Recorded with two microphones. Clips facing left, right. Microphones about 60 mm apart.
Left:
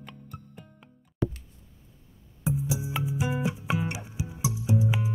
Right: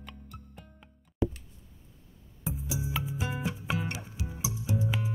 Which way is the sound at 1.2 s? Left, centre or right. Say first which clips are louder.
Even; centre.